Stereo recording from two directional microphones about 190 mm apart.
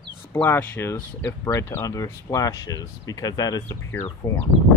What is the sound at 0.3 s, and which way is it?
Speech, 10° left (ahead or behind).